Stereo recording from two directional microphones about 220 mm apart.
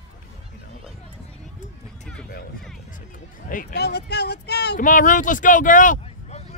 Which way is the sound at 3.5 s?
45° left (ahead or behind).